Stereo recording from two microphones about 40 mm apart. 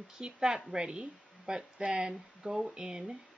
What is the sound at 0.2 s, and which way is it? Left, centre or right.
Speech, centre.